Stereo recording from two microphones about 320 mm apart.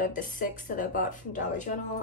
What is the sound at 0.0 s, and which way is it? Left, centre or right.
Speech, left.